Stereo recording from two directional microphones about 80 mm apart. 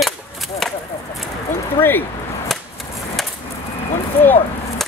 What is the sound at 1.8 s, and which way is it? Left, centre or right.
Speech, left.